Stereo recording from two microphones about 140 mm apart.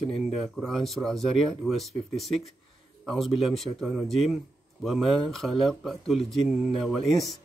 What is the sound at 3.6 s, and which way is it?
Speech, centre (ahead or behind).